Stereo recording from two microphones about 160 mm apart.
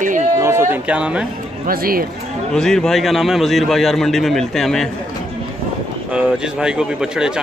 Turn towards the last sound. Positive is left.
turn(degrees=-5)  # may be behind; listen again after turning